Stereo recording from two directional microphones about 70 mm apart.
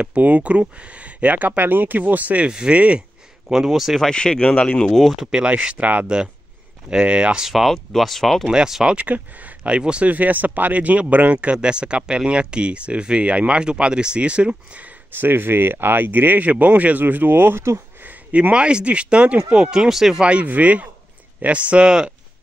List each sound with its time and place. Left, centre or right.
0.0 s speech: right; by 4.1 s centre
4.1 s speech: centre
4.9 s speech: centre
5.3 s speech: centre
7.4 s speech: centre
8.5 s speech: centre
8.9 s speech: right
15.1 s speech: right
18.3 s speech: centre